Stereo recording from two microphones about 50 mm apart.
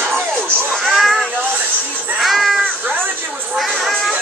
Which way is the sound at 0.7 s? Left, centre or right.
Centre.